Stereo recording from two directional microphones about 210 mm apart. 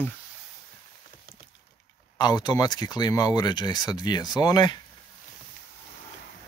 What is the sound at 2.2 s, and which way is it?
Speech, 20° left (ahead or behind).